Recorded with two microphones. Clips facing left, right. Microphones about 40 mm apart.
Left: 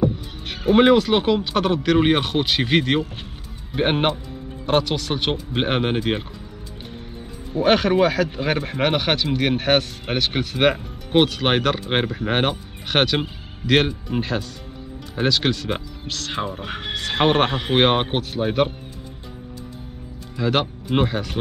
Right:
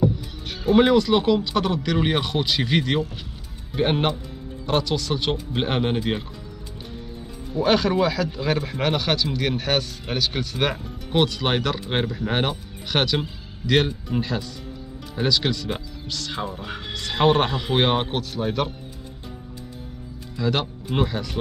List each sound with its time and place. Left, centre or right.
0.0 s music: left
0.7 s speech: left
7.5 s speech: left
20.3 s speech: left